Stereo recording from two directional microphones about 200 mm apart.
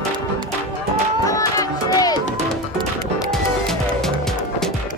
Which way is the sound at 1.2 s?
15° left (ahead or behind).